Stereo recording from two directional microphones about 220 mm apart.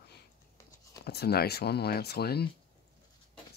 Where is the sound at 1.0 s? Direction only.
45° left (ahead or behind).